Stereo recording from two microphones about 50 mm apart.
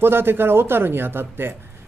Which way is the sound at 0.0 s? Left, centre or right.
Right.